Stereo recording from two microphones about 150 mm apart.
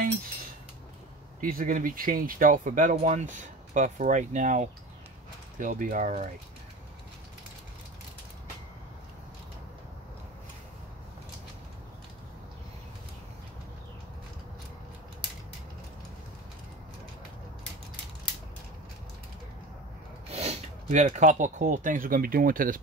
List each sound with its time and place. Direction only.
1.4 s speech: 65° right (ahead or behind)
20.2 s speech: 45° right (ahead or behind); by 22.8 s 70° right (ahead or behind)